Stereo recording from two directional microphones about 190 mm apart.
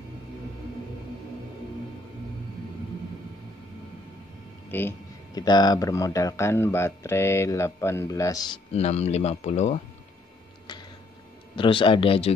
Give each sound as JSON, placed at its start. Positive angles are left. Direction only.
{"t": 4.6, "sound": "speech", "side_deg": 10}
{"t": 8.7, "sound": "speech", "side_deg": 35}
{"t": 11.5, "sound": "speech", "side_deg": 25}